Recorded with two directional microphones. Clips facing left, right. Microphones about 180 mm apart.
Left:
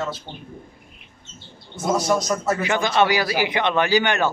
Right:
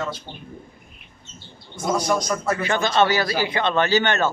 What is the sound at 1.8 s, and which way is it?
Speech, 5° left (ahead or behind).